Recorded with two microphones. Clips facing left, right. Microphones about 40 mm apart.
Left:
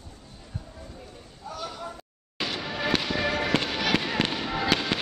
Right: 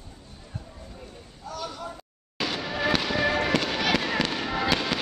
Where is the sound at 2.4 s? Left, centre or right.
Centre.